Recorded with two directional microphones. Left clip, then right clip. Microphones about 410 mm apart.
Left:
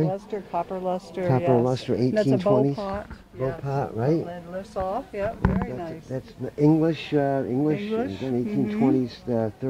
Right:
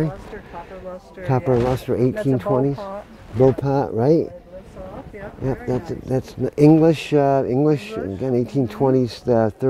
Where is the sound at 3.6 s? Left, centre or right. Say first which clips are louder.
Right 7 dB; right.